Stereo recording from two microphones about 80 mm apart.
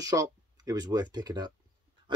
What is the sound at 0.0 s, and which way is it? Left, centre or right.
Speech, right.